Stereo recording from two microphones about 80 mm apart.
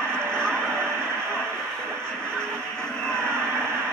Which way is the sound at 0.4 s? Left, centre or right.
Centre.